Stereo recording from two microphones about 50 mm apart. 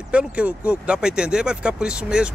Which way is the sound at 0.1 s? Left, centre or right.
Right.